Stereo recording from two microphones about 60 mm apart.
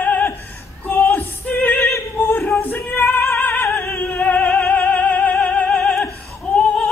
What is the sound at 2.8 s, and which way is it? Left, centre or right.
Music, left.